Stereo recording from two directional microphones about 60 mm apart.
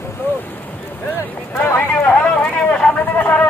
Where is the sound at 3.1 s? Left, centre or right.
Left.